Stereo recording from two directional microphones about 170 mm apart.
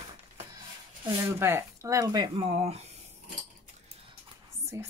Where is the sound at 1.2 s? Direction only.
15° right (ahead or behind).